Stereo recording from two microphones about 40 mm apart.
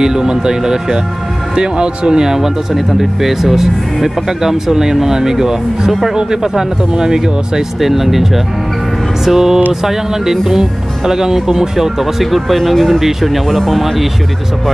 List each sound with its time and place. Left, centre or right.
0.0 s speech: centre
6.1 s speech: centre